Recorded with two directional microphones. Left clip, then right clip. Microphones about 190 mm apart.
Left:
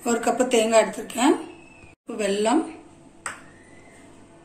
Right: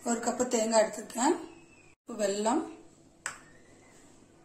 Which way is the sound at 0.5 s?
25° right (ahead or behind).